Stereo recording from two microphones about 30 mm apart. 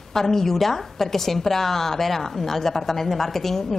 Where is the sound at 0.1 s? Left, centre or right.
Centre.